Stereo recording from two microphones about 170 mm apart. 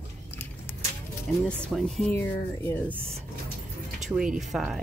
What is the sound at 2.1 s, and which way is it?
Speech, 15° left (ahead or behind).